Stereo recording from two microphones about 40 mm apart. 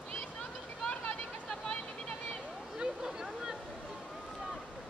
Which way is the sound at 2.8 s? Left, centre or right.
Centre.